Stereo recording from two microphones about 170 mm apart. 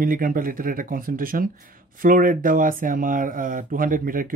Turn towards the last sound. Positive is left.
turn(degrees=-55)  # may be behind; listen again after turning